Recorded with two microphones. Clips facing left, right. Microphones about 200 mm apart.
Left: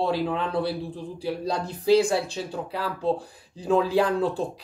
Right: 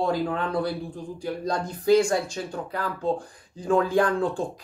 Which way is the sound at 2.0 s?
5° left (ahead or behind).